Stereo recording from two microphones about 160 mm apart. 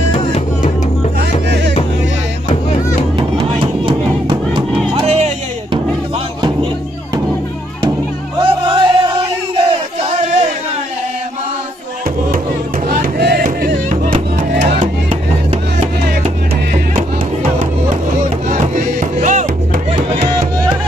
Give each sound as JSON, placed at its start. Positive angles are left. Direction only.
{"t": 0.1, "sound": "music", "side_deg": 35}
{"t": 5.0, "sound": "music", "side_deg": -40}
{"t": 8.5, "sound": "music", "side_deg": -30}
{"t": 12.8, "sound": "music", "side_deg": -75}
{"t": 14.8, "sound": "music", "side_deg": -45}
{"t": 19.1, "sound": "music", "side_deg": -50}
{"t": 20.2, "sound": "music", "side_deg": -30}